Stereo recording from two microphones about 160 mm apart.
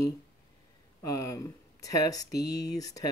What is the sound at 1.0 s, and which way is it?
Speech, 20° left (ahead or behind).